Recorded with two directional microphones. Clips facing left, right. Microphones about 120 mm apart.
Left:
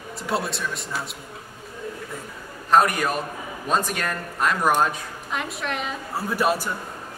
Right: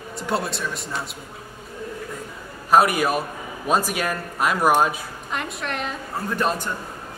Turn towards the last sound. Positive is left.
turn(degrees=10)  # may be behind; listen again after turning